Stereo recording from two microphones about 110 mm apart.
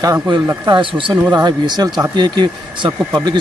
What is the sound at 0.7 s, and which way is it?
Speech, 50° right (ahead or behind).